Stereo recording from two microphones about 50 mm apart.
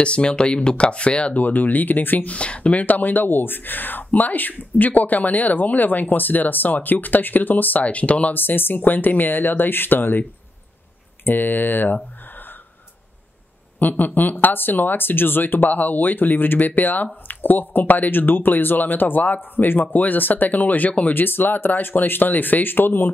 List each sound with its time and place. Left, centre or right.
0.0 s speech: left
2.3 s speech: left
8.4 s speech: left
11.2 s speech: left
13.7 s speech: left